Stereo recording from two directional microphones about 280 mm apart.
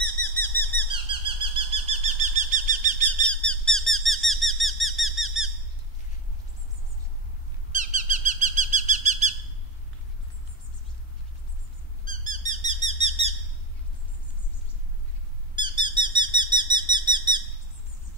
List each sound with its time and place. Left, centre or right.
0.0 s bird vocalization: centre
0.9 s bird vocalization: centre
3.3 s bird: centre
7.7 s bird: right
12.0 s squeak: right
15.5 s squeak: centre
16.0 s a sound: centre
16.7 s bird: centre